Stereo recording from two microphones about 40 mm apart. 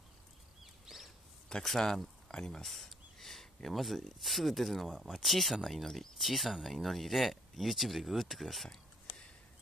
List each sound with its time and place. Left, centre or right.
0.8 s a sound: centre
1.6 s a man's voice: centre
2.6 s speech: centre